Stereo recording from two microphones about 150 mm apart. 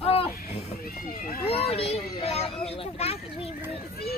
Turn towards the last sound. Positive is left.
turn(degrees=45)  # may be behind; listen again after turning